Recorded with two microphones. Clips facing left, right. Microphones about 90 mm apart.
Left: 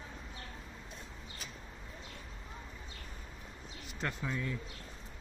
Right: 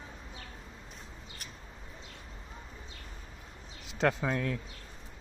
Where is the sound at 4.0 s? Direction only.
90° right.